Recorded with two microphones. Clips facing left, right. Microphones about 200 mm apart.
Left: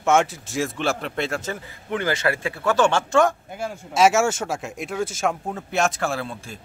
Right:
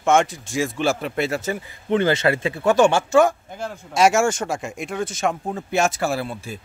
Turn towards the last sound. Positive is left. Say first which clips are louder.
# right 3 dB
turn(degrees=-5)  # may be behind; listen again after turning